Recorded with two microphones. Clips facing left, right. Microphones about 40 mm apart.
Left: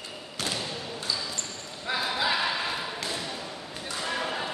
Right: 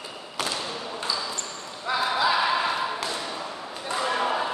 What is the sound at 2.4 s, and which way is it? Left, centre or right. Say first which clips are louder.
Basketball bounce: right 5 dB; centre.